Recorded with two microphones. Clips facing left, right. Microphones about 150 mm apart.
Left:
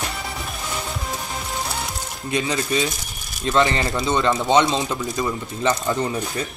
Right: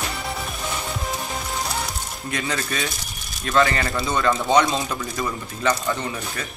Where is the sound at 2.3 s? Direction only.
20° left (ahead or behind).